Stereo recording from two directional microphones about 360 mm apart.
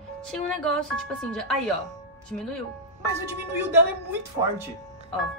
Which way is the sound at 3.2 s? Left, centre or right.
Centre.